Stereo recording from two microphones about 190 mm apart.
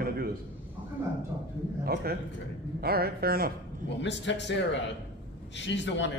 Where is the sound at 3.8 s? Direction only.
70° left (ahead or behind).